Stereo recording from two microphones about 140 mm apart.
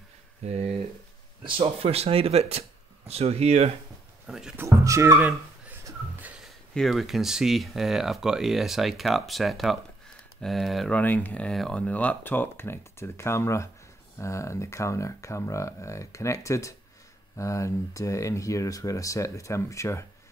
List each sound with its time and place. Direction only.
0.4 s speech: 50° right (ahead or behind)
4.3 s speech: 5° right (ahead or behind)
4.6 s a sound: 20° right (ahead or behind)
6.7 s speech: centre (ahead or behind)
11.0 s speech: 10° left (ahead or behind)